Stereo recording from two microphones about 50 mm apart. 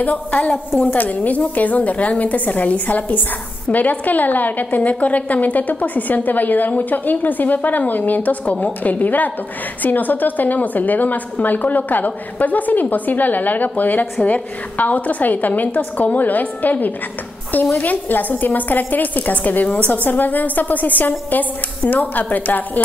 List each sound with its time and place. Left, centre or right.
0.0 s a woman's voice: left